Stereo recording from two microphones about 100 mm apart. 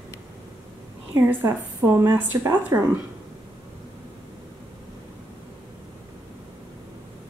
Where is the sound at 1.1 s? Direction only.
25° right (ahead or behind).